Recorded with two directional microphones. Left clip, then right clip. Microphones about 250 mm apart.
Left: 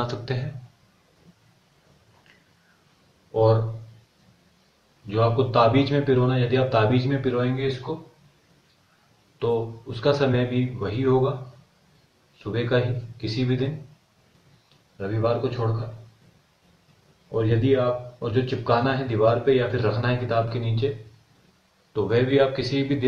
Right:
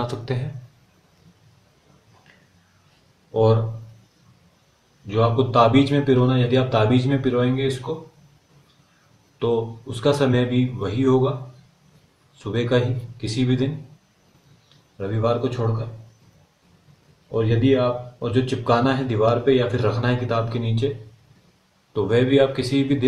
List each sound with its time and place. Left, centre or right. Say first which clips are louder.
0.0 s a man's voice: right 1 dB; centre
5.0 s a man's voice: right 2 dB; right
9.4 s a man's voice: right 2 dB; right
12.4 s a man's voice: right 2 dB; right
15.0 s a man's voice: right 2 dB; right
17.3 s a man's voice: right 2 dB; right
21.9 s a man's voice: right 3 dB; right